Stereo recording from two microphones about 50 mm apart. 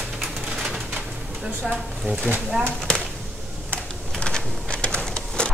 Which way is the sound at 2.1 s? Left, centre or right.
Right.